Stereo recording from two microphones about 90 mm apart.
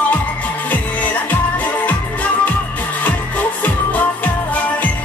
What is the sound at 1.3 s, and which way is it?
Music, 20° left (ahead or behind).